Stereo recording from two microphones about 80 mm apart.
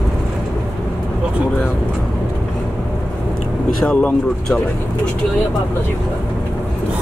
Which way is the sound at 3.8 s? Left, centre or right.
Centre.